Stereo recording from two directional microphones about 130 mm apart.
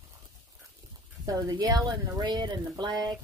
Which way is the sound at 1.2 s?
30° right (ahead or behind).